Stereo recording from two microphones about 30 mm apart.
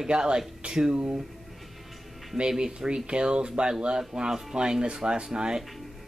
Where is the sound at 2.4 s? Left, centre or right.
Right.